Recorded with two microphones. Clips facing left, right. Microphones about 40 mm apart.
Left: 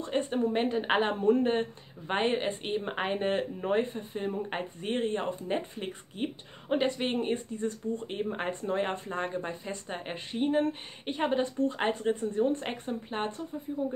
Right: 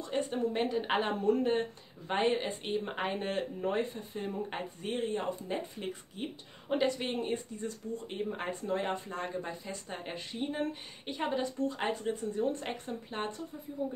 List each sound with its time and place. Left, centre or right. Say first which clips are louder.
0.0 s speech: left 3 dB; left